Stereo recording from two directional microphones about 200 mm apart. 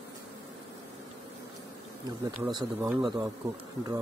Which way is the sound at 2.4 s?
20° right (ahead or behind).